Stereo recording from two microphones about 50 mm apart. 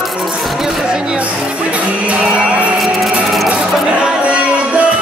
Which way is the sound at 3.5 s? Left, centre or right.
Right.